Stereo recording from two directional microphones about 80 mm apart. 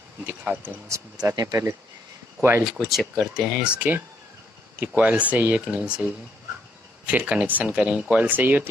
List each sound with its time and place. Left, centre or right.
0.5 s speech: right
1.3 s speech: right
3.3 s speech: centre
7.1 s speech: centre